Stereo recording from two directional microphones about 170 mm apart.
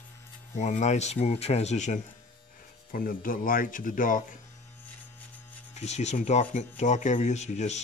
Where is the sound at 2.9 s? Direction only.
55° left (ahead or behind).